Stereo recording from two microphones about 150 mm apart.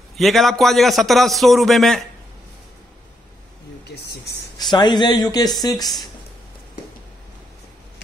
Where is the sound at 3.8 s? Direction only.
90° left.